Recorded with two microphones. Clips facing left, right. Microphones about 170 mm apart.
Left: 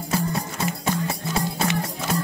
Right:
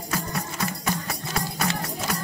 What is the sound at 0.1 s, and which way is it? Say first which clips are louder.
Music: left 4 dB; 25° left (ahead or behind).